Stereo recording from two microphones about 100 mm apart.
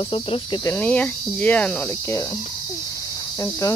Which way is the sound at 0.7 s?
15° left (ahead or behind).